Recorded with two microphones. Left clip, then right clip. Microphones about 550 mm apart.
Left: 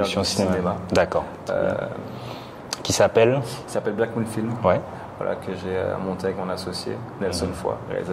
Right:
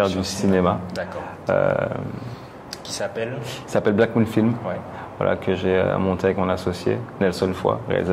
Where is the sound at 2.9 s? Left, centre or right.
Left.